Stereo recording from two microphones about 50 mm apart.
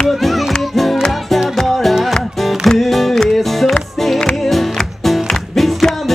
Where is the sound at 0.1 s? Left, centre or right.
Centre.